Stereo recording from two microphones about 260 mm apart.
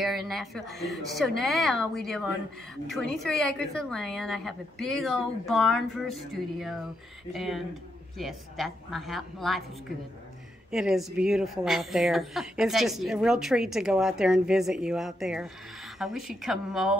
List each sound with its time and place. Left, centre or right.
0.0 s a woman's voice: centre